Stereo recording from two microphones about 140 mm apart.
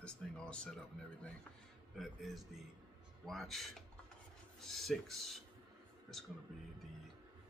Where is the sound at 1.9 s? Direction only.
Centre (ahead or behind).